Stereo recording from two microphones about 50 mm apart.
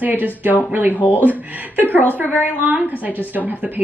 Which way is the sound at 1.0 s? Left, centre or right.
Left.